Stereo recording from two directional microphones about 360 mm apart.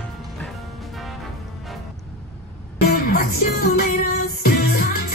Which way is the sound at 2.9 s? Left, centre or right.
Left.